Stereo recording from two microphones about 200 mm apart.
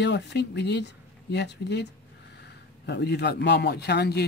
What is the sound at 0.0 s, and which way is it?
Speech, 55° left (ahead or behind).